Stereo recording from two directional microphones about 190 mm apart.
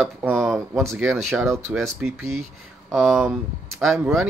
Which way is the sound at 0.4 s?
Centre (ahead or behind).